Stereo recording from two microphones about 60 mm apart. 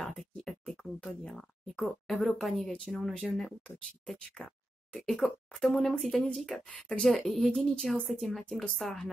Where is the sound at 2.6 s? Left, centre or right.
Centre.